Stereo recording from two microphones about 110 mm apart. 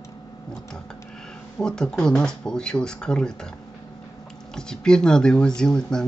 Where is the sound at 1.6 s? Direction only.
5° left (ahead or behind).